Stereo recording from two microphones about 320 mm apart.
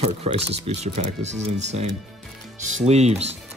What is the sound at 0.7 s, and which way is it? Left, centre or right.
Speech, right.